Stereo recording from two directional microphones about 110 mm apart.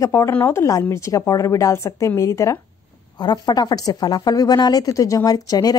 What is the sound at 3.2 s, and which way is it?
Speech, 40° left (ahead or behind).